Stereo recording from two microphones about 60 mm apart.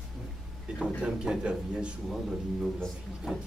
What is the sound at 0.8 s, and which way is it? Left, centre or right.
Speech, centre.